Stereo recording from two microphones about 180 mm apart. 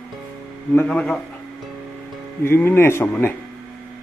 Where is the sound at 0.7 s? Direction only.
5° left (ahead or behind).